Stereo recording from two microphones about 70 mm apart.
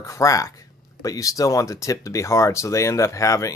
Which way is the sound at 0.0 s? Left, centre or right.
Left.